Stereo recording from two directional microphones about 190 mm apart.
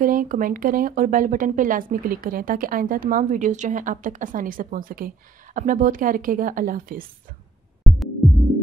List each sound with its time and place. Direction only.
0.0 s speech: 45° right (ahead or behind)
7.8 s music: centre (ahead or behind)